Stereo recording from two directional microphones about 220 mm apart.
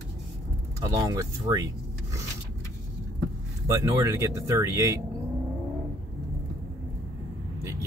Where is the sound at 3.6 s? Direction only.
15° right (ahead or behind).